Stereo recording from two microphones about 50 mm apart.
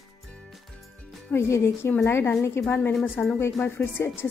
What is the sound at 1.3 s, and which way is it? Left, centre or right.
A woman's voice, left.